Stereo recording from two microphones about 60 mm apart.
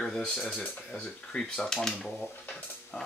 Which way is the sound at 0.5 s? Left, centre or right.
Centre.